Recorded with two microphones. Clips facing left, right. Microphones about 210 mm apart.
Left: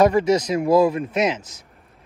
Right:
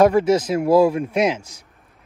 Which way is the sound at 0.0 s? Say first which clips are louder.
Right 1 dB; 10° right (ahead or behind).